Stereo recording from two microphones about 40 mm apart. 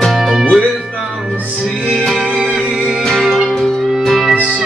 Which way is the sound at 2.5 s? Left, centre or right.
Right.